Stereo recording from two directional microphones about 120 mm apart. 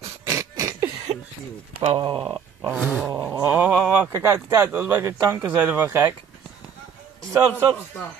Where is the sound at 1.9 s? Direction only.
45° right (ahead or behind).